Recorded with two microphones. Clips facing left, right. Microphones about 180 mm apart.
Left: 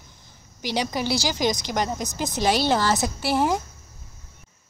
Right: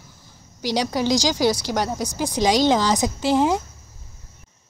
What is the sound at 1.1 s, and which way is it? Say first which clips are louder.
Speech: right 6 dB; 15° right (ahead or behind).